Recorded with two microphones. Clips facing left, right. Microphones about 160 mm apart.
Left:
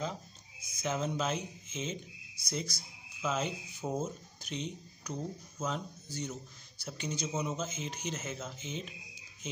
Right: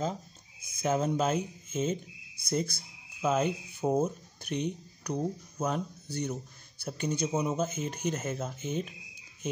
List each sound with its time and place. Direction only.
0.7 s speech: 50° right (ahead or behind)